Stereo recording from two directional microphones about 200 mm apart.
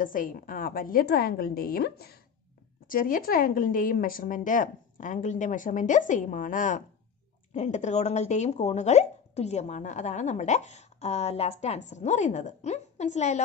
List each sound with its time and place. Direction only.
0.0 s a woman's voice: 40° left (ahead or behind)